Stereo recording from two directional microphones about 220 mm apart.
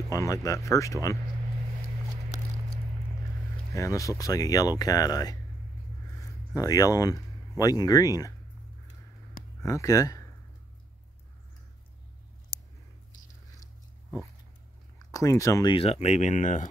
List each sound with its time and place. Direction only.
0.1 s speech: 15° left (ahead or behind)
3.7 s speech: 15° left (ahead or behind)
6.5 s speech: 15° left (ahead or behind)
9.7 s speech: 15° left (ahead or behind)
15.0 s speech: 15° left (ahead or behind); by 16.6 s 35° left (ahead or behind)